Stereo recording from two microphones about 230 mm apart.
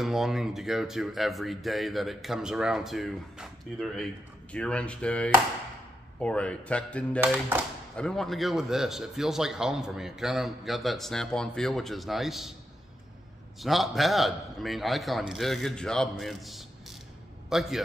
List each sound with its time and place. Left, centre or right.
0.0 s a man's voice: centre
7.2 s a man's voice: centre
13.6 s a man's voice: centre